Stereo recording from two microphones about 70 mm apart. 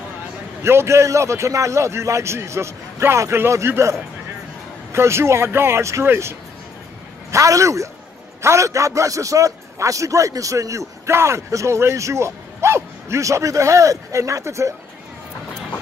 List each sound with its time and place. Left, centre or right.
0.6 s a man's voice: right
4.9 s a man's voice: right